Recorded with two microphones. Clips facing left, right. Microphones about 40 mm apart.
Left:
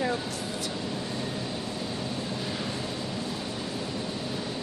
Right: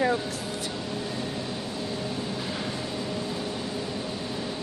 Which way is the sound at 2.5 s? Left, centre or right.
Right.